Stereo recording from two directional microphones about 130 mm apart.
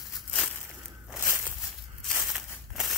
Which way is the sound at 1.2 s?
15° right (ahead or behind).